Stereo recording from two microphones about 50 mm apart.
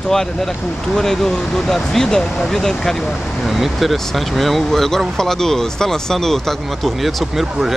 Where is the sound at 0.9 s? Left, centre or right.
Centre.